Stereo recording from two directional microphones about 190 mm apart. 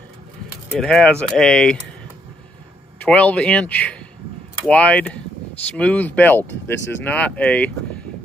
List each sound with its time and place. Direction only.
0.7 s speech: centre (ahead or behind)
3.0 s speech: 5° left (ahead or behind)
6.4 s speech: 70° left (ahead or behind)
7.1 s speech: 5° left (ahead or behind)